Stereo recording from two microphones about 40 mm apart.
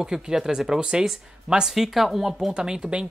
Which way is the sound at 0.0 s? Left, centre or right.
Centre.